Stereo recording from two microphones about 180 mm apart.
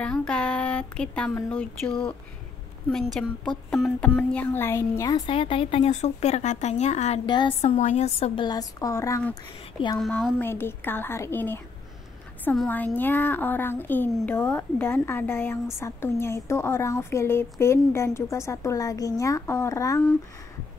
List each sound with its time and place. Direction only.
0.0 s speech: 5° left (ahead or behind)
2.9 s a woman's voice: 5° left (ahead or behind); by 7.2 s 40° left (ahead or behind)
7.2 s a woman's voice: 25° left (ahead or behind)
7.6 s a woman's voice: 40° left (ahead or behind)
8.4 s a woman's voice: 20° left (ahead or behind)
9.9 s speech: 5° left (ahead or behind); by 20.0 s 20° left (ahead or behind)